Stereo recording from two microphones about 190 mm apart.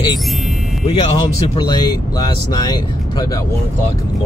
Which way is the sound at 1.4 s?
25° left (ahead or behind).